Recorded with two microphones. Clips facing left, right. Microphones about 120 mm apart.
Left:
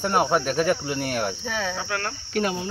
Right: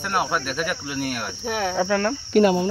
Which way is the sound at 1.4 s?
60° right (ahead or behind).